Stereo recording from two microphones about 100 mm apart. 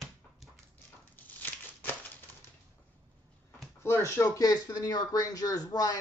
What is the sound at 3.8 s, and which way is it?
Speech, 25° left (ahead or behind).